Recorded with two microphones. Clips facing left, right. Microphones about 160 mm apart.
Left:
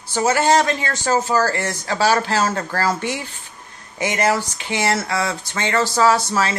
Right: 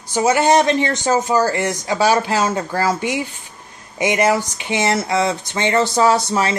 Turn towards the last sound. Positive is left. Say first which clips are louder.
# right 2 dB
turn(degrees=-20)  # may be behind; listen again after turning